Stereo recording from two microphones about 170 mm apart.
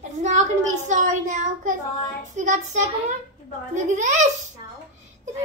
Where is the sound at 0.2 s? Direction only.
45° right (ahead or behind).